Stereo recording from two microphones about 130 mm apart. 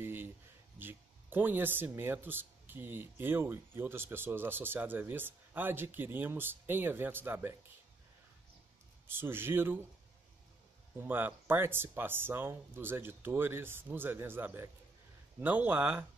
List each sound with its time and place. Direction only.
0.0 s a sound: 15° right (ahead or behind)
0.7 s speech: 15° right (ahead or behind)
9.0 s speech: 15° right (ahead or behind)
11.0 s speech: 15° right (ahead or behind)